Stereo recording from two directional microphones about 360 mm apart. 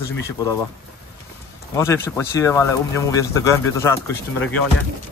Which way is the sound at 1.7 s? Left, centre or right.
Centre.